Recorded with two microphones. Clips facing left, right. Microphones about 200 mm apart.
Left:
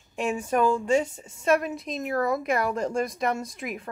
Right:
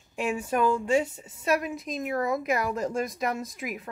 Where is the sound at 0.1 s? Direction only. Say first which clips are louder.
Left 2 dB; 5° right (ahead or behind).